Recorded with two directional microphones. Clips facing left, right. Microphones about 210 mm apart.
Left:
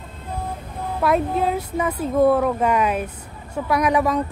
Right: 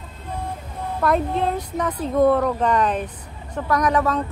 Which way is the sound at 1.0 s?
5° left (ahead or behind).